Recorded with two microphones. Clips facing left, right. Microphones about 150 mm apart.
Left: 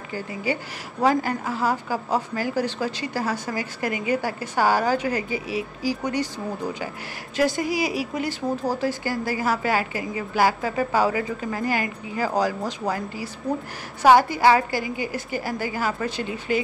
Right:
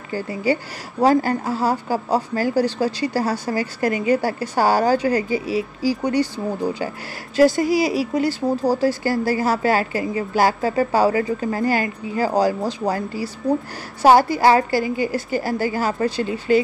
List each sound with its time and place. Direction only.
0.1 s a woman's voice: 35° right (ahead or behind)